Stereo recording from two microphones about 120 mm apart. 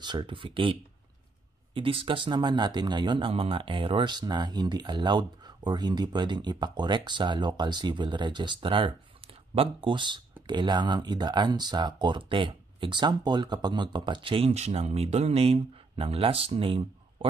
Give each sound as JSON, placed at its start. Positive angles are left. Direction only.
{"t": 0.0, "sound": "speech", "side_deg": -40}
{"t": 14.5, "sound": "speech", "side_deg": -60}